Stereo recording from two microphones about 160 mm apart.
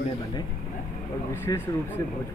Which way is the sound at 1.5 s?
20° left (ahead or behind).